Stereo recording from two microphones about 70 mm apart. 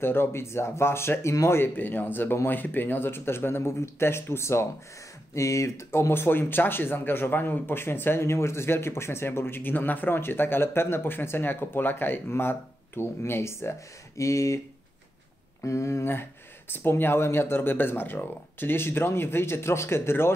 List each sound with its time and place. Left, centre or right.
0.0 s speech: left
15.6 s speech: left